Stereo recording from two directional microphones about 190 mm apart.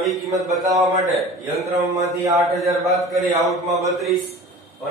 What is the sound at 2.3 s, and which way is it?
A man's voice, centre (ahead or behind).